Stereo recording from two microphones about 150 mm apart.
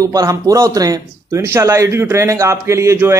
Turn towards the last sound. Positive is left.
turn(degrees=-20)  # may be behind; listen again after turning